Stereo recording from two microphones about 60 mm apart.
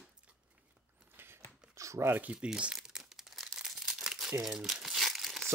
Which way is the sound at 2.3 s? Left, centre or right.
Centre.